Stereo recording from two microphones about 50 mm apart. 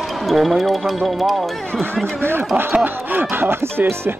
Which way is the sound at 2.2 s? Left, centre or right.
Right.